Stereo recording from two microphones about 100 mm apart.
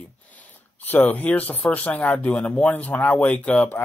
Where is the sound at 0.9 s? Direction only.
15° left (ahead or behind).